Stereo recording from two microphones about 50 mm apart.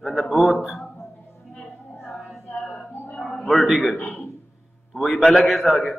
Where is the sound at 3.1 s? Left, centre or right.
Left.